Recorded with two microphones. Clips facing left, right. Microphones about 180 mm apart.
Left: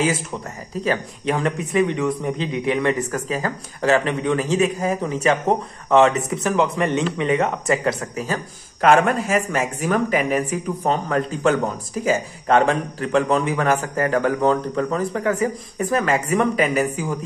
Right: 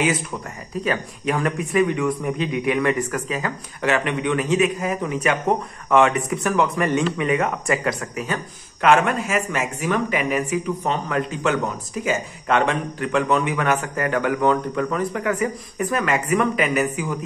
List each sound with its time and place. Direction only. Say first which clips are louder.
0.8 s a man's voice: left 2 dB; 25° left (ahead or behind)